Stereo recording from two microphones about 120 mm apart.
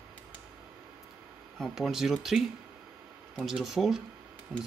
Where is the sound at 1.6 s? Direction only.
Centre (ahead or behind).